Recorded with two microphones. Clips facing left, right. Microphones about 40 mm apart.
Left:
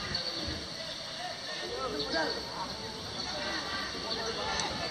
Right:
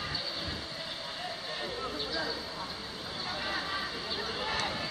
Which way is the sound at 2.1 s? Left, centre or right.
Centre.